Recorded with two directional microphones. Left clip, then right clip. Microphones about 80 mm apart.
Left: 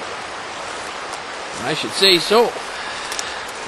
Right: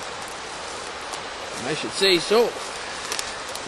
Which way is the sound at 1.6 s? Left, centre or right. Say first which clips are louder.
Left 6 dB; left.